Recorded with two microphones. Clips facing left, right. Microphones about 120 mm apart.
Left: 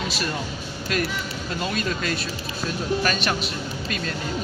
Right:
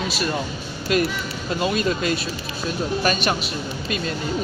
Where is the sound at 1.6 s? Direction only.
15° right (ahead or behind).